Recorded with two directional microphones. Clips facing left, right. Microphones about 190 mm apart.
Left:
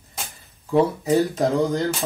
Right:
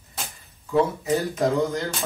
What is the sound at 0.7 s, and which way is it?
Speech, 35° left (ahead or behind).